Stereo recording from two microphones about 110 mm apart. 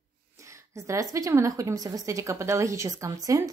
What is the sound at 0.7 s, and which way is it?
A woman's voice, 30° right (ahead or behind).